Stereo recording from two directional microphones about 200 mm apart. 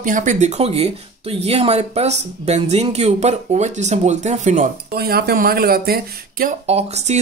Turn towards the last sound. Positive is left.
turn(degrees=-30)  # may be behind; listen again after turning